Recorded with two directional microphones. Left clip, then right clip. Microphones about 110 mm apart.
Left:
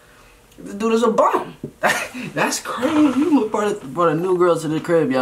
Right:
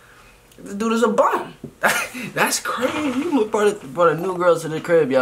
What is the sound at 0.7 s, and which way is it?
Speech, 10° right (ahead or behind).